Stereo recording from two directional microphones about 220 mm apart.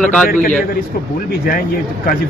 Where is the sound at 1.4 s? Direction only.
40° left (ahead or behind).